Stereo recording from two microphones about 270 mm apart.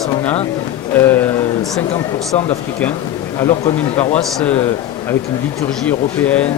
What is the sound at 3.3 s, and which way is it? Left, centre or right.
Speech, centre.